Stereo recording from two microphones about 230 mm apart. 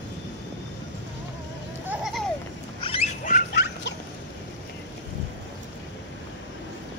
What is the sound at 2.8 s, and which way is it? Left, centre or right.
Duck, left.